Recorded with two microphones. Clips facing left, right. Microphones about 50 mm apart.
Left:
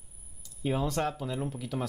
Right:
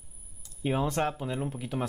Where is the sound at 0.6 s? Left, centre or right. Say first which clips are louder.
Right 1 dB; right.